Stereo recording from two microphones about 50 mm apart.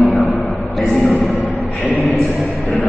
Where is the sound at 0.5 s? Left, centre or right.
Centre.